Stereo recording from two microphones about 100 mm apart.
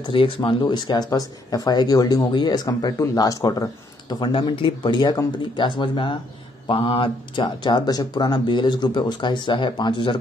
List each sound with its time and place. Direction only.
0.1 s speech: 60° left (ahead or behind)
0.6 s speech: 45° left (ahead or behind)
4.4 s speech: 55° left (ahead or behind)